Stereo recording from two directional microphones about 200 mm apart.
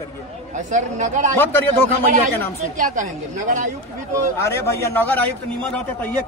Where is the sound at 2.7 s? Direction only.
40° right (ahead or behind).